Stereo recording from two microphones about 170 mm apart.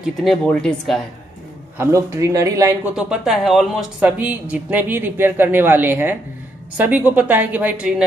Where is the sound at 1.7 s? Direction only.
15° right (ahead or behind).